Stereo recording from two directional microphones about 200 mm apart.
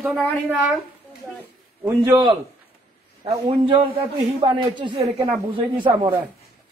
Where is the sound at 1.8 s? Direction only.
10° right (ahead or behind).